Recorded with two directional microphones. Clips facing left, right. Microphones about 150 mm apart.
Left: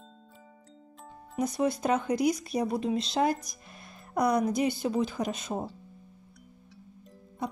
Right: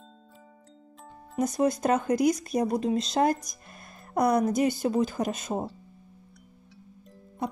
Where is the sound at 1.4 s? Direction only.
45° right (ahead or behind).